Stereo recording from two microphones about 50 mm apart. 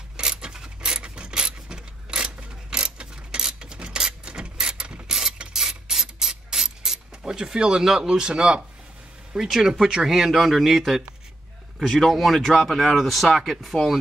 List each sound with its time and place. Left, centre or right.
0.2 s keys jangling: centre
5.0 s mechanisms: centre
9.3 s speech: centre